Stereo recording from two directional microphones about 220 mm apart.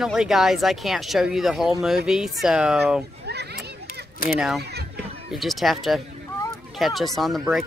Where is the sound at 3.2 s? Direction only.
50° right (ahead or behind).